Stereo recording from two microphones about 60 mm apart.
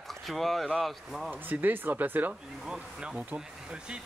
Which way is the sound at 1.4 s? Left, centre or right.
Right.